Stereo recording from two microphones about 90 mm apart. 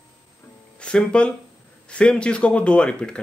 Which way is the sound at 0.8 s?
10° left (ahead or behind).